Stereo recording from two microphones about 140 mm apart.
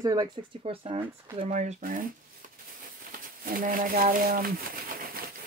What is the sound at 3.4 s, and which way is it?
Speech, 85° right.